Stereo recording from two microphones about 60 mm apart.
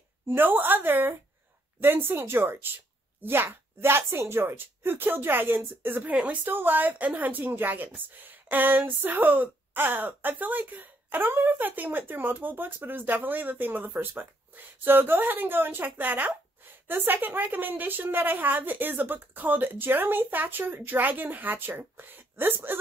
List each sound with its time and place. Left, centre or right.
0.3 s a woman's voice: right